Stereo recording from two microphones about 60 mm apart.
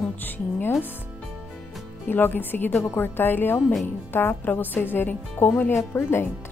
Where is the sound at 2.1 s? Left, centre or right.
Left.